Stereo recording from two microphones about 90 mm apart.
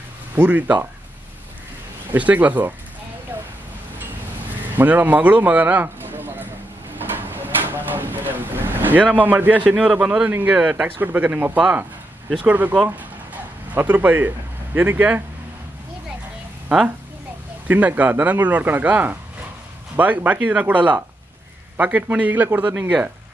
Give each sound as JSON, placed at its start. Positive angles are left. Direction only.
{"t": 0.4, "sound": "a man's voice", "side_deg": -20}
{"t": 2.0, "sound": "a man's voice", "side_deg": -15}
{"t": 4.7, "sound": "speech", "side_deg": -20}
{"t": 7.0, "sound": "vehicle", "side_deg": -20}
{"t": 9.2, "sound": "a man's voice", "side_deg": -20}
{"t": 17.6, "sound": "a man's voice", "side_deg": -15}